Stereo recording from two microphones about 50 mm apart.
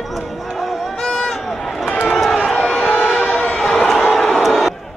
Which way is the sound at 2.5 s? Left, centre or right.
Centre.